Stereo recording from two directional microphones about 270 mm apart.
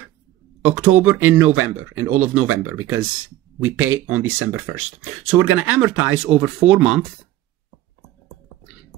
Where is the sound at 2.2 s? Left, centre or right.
Centre.